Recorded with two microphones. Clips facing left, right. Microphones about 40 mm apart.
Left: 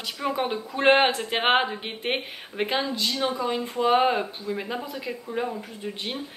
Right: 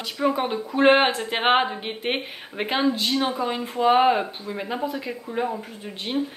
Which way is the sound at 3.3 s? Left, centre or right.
Centre.